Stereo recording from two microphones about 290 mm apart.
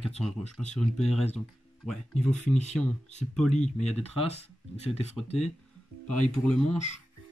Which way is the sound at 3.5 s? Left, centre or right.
Left.